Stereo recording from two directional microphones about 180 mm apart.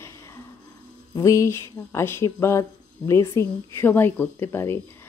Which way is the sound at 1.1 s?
15° left (ahead or behind).